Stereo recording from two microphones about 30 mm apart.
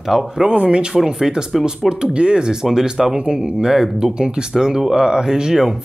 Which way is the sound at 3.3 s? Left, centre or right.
Centre.